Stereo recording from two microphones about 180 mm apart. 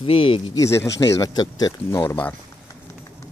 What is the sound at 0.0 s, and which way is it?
Speech, 30° left (ahead or behind).